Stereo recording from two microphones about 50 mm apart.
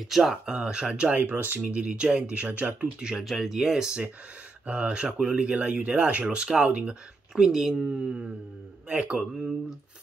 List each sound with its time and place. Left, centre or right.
0.0 s speech: centre; by 1.2 s right
1.2 s speech: right
1.7 s speech: right
2.3 s speech: right
3.0 s speech: centre
3.3 s speech: centre; by 7.0 s right
7.3 s speech: centre
8.8 s speech: right